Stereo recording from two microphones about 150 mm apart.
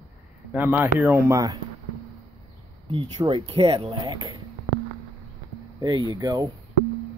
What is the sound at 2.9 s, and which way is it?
Speech, 35° right (ahead or behind).